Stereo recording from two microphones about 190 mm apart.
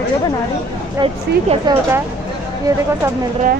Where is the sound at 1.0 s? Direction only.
25° right (ahead or behind).